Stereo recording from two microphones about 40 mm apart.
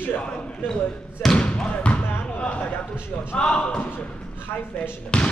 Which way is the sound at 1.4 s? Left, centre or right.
Left.